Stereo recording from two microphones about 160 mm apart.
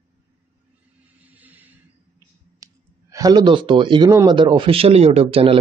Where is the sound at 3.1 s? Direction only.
25° right (ahead or behind).